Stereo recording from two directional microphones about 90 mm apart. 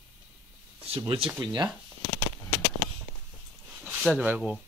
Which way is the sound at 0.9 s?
85° right.